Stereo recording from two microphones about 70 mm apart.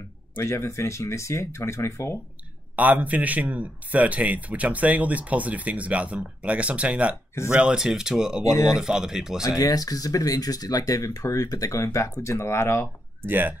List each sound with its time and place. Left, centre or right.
0.4 s speech: left
2.7 s a man's voice: right; by 9.4 s centre
9.6 s speech: left
11.0 s speech: left
11.4 s speech: left
13.2 s a man's voice: right